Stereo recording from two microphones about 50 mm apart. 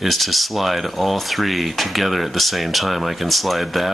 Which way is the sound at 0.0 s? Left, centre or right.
Centre.